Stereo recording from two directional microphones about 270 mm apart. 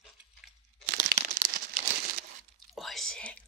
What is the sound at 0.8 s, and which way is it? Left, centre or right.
Crumpling, right.